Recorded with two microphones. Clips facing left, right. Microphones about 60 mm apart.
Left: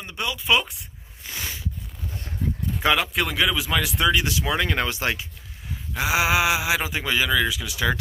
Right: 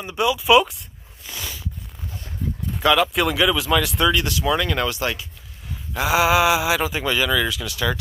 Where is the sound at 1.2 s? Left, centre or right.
Left.